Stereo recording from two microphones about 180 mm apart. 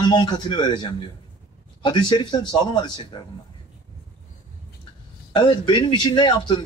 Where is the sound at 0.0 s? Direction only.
25° left (ahead or behind).